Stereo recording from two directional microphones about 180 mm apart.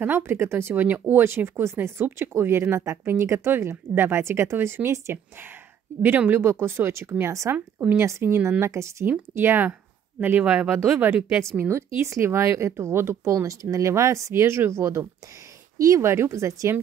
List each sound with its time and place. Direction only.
0.0 s speech: 15° right (ahead or behind)